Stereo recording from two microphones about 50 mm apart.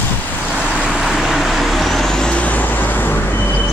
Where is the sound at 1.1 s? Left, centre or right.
Centre.